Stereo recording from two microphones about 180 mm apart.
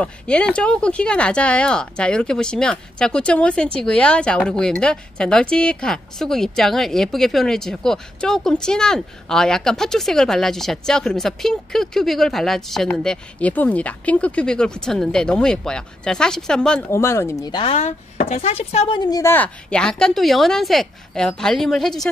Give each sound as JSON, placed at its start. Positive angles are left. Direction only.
{"t": 0.0, "sound": "speech", "side_deg": 5}
{"t": 16.9, "sound": "speech", "side_deg": 15}
{"t": 17.7, "sound": "speech", "side_deg": 45}